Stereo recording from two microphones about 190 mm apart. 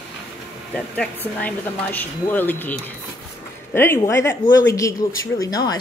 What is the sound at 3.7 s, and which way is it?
A woman's voice, 10° left (ahead or behind).